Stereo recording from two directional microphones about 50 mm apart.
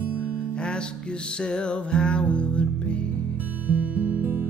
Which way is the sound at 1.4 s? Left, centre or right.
Centre.